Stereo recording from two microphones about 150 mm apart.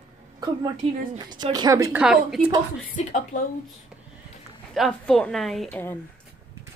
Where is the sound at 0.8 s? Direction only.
40° right (ahead or behind); by 2.0 s 20° right (ahead or behind).